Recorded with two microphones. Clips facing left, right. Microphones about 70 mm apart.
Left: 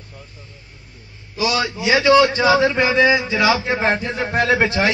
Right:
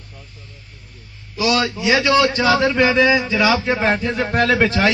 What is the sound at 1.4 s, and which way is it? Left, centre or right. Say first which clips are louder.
A man's voice: right 2 dB; centre.